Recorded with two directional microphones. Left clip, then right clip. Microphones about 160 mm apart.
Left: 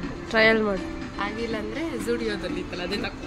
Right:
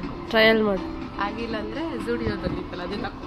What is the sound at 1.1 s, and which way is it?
Music, 55° left (ahead or behind).